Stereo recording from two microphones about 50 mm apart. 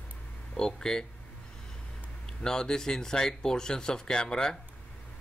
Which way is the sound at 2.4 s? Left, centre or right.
Centre.